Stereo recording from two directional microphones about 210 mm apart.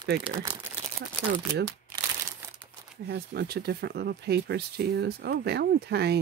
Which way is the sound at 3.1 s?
50° right (ahead or behind).